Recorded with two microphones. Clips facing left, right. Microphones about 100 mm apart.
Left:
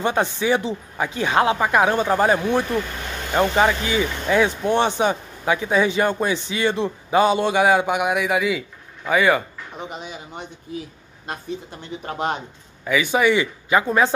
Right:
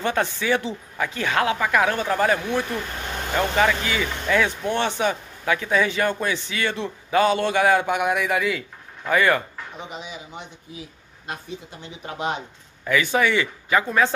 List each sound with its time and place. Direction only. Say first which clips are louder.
0.0 s speech: left 3 dB; 20° left (ahead or behind)
9.8 s speech: left 2 dB; 45° left (ahead or behind)
11.8 s speech: left 2 dB; 50° left (ahead or behind)
12.8 s speech: left 2 dB; 10° left (ahead or behind)